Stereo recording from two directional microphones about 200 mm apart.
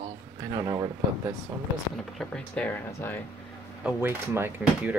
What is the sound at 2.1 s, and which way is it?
Speech, 5° left (ahead or behind).